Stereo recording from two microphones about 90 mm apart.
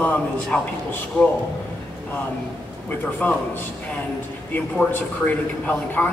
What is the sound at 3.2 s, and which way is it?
Speech, 15° left (ahead or behind).